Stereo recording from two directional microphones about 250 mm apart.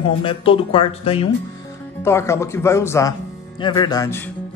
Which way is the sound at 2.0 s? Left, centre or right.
Centre.